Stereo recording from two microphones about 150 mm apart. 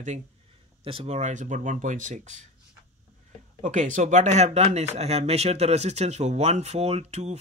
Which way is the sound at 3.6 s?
55° right (ahead or behind).